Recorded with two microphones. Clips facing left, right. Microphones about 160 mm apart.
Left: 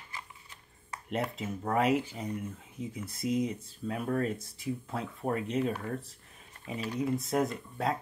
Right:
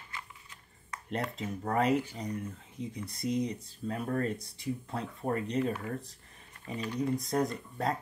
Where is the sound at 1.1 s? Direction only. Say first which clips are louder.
Left 1 dB; 5° left (ahead or behind).